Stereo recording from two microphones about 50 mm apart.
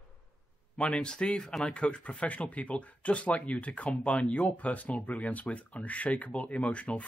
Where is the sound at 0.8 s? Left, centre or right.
Centre.